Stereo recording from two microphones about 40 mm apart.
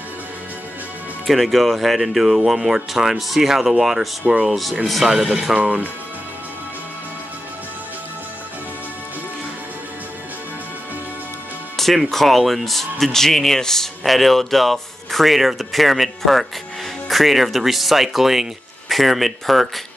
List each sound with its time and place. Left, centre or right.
1.2 s speech: centre
5.6 s speech: right
11.7 s music: centre
12.1 s speech: centre